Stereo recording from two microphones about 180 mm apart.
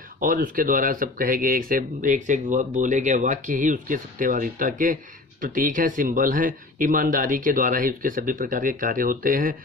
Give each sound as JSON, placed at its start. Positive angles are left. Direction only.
{"t": 0.2, "sound": "speech", "side_deg": -50}